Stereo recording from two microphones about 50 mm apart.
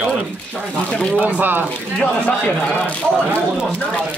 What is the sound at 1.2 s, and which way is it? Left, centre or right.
Speech, right.